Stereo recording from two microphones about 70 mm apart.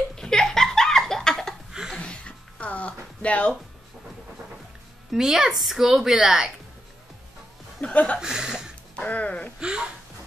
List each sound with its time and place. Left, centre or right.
0.1 s laughter: centre
1.7 s a sound: centre
2.0 s a sound: centre
5.1 s a woman's voice: centre
7.8 s speech: centre
8.2 s speech: centre
8.9 s speech: centre
9.6 s a woman's voice: centre